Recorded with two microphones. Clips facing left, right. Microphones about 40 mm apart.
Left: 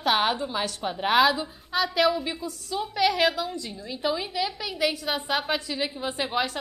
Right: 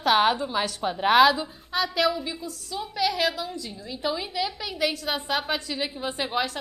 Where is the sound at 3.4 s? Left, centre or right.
Centre.